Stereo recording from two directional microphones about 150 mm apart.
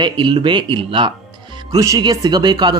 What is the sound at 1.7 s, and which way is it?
Speech, 25° right (ahead or behind).